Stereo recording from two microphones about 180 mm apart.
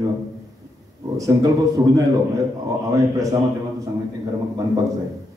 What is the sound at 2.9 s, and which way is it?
Speech, 20° right (ahead or behind).